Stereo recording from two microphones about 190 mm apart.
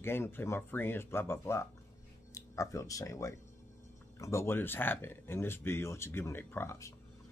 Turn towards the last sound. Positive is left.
turn(degrees=15)  # may be behind; listen again after turning